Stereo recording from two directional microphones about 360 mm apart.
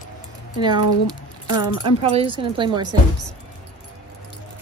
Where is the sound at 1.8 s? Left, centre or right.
Centre.